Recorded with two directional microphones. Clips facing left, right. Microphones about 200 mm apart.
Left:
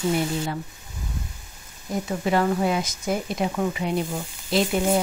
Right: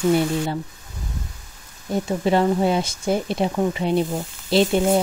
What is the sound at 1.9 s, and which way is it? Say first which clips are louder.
Speech: right 4 dB; 25° right (ahead or behind).